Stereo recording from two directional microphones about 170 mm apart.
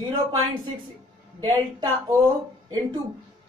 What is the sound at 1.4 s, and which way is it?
Speech, 25° right (ahead or behind).